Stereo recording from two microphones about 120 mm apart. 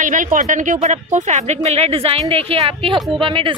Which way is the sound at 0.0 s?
90° right.